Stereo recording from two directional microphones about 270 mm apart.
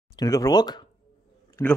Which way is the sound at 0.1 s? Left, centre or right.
Centre.